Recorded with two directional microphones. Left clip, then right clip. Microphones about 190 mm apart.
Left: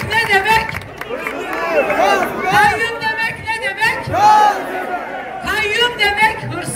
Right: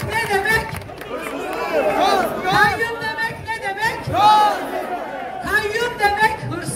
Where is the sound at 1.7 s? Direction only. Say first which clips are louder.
Left 3 dB; 30° left (ahead or behind).